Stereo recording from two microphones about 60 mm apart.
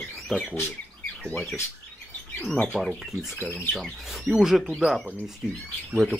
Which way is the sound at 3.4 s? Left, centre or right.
Right.